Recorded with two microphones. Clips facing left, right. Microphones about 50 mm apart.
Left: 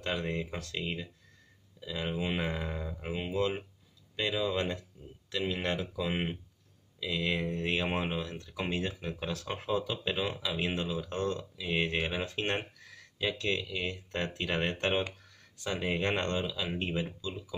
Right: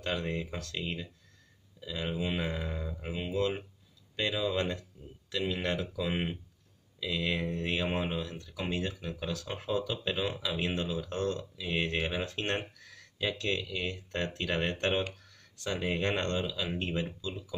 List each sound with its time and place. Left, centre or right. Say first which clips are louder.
0.0 s speech: even; centre
2.1 s speech: even; left
4.2 s speech: even; centre
5.3 s speech: even; left; by 7.4 s centre
7.8 s speech: even; left
10.1 s speech: even; centre
16.4 s speech: even; centre